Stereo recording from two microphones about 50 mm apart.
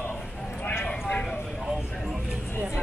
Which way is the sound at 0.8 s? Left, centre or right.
Left.